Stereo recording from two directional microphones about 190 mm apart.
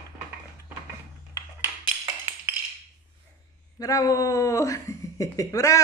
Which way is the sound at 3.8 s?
20° left (ahead or behind).